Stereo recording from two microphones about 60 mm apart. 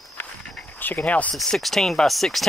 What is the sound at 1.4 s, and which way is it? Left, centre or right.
Speech, centre.